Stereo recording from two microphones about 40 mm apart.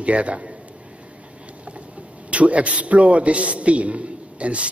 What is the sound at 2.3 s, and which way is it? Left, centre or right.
A man's voice, right.